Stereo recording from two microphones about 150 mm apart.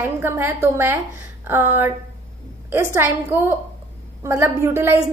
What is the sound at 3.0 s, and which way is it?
A woman's voice, 15° right (ahead or behind).